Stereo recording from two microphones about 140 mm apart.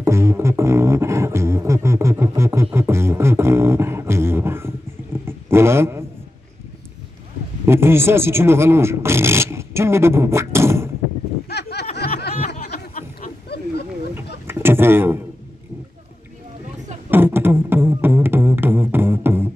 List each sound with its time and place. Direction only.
0.0 s beatboxing: 20° right (ahead or behind)
5.2 s a sound: 15° right (ahead or behind)
7.6 s speech: 15° right (ahead or behind)
12.1 s snicker: 85° left
14.1 s a sound: 15° right (ahead or behind)
17.1 s beatboxing: 15° right (ahead or behind)